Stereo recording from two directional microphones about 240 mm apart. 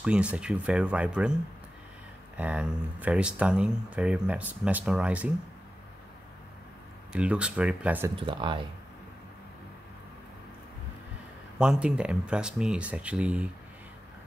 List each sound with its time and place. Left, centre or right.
0.0 s speech: centre
7.1 s speech: centre
8.2 s speech: right
11.5 s speech: centre